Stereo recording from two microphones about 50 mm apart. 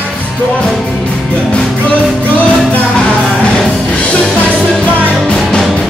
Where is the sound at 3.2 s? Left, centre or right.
Centre.